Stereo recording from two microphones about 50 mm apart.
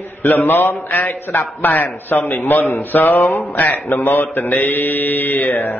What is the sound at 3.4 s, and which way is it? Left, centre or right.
Mantra, left.